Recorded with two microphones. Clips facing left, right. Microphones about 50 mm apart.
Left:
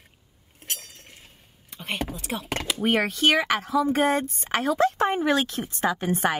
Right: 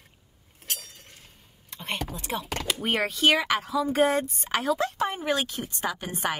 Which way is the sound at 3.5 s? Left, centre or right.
Left.